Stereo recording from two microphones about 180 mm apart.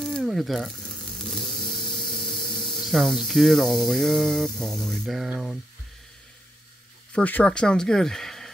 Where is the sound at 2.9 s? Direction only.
Centre (ahead or behind).